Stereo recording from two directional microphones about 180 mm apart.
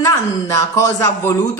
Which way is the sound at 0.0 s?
15° left (ahead or behind).